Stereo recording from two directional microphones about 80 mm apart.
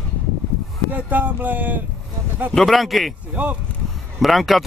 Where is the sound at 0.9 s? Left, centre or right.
Right.